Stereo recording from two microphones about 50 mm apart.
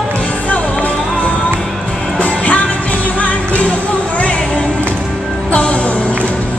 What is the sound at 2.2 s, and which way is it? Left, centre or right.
Music, left.